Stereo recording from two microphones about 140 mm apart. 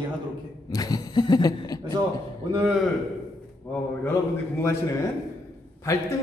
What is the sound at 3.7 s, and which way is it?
Speech, 15° left (ahead or behind).